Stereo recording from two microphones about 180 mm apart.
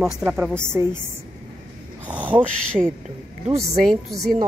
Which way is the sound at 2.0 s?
10° right (ahead or behind).